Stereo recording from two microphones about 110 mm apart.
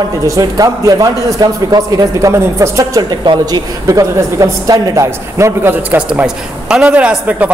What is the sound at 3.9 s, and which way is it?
Speech, 30° right (ahead or behind).